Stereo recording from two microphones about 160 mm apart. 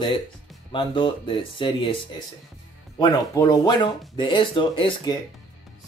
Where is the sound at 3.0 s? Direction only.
25° left (ahead or behind).